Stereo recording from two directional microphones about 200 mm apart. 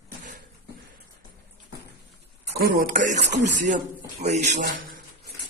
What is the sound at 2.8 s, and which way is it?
Speech, 40° right (ahead or behind).